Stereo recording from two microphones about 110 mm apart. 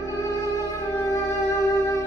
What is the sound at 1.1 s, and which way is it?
Music, 25° left (ahead or behind).